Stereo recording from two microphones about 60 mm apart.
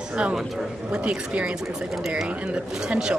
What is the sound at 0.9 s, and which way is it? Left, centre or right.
A woman's voice, centre.